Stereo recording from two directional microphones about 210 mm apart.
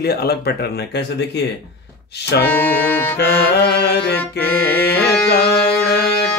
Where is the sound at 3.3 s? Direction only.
50° left (ahead or behind).